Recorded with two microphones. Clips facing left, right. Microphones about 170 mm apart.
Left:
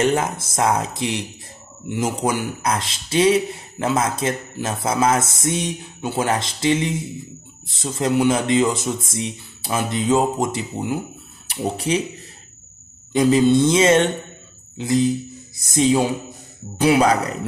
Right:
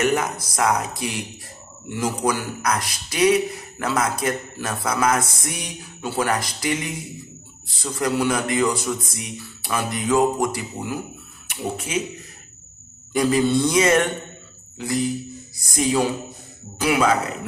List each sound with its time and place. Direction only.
0.0 s speech: 25° left (ahead or behind)
11.6 s speech: 35° left (ahead or behind)
13.1 s speech: 20° left (ahead or behind)
14.8 s music: 20° left (ahead or behind)
16.7 s speech: 30° left (ahead or behind)